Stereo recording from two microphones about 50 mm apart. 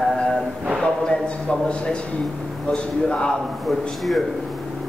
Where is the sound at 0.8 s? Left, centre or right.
Centre.